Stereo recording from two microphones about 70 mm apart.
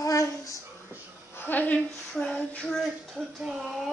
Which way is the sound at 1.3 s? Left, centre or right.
Left.